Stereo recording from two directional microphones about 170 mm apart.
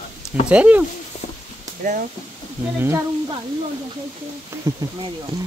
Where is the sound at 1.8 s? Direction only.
50° right (ahead or behind).